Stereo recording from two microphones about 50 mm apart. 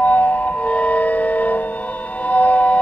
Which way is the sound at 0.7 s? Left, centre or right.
Left.